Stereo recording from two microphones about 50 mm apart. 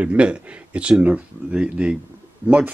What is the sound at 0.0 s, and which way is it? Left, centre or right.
Speech, right.